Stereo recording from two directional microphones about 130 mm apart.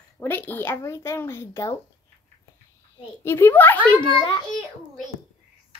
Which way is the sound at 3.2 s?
15° left (ahead or behind).